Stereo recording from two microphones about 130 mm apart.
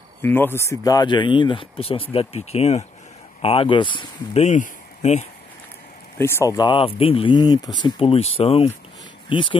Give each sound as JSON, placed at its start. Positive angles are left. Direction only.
{"t": 0.2, "sound": "speech", "side_deg": 15}
{"t": 3.4, "sound": "speech", "side_deg": 45}
{"t": 4.3, "sound": "speech", "side_deg": 60}
{"t": 6.1, "sound": "speech", "side_deg": 20}